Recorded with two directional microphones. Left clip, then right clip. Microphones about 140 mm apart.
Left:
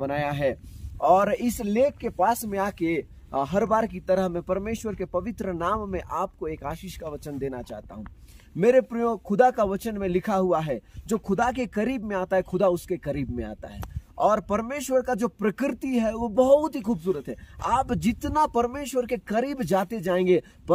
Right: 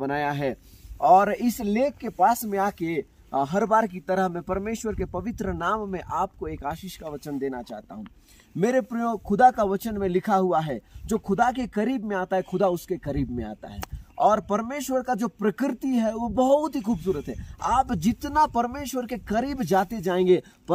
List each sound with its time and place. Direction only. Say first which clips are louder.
0.0 s speech: even; 55° left (ahead or behind); by 20.7 s 35° left (ahead or behind)